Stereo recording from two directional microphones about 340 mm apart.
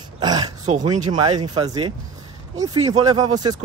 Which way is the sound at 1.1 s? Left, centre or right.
Centre.